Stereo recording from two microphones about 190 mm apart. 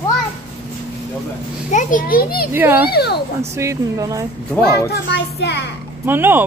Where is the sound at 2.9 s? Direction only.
60° left (ahead or behind).